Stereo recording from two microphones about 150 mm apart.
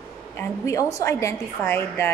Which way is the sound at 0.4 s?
20° left (ahead or behind).